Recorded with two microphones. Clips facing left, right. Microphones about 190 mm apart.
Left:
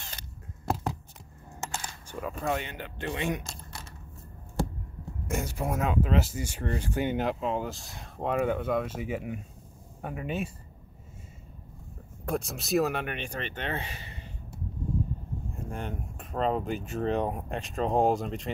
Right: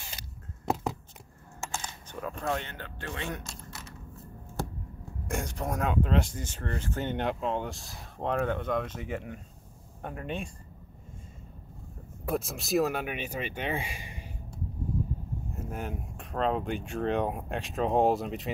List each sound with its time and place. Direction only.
1.6 s coin: 10° left (ahead or behind)
2.7 s speech: 15° left (ahead or behind)
5.2 s speech: 5° left (ahead or behind)
12.3 s speech: centre (ahead or behind)
15.5 s speech: 5° right (ahead or behind)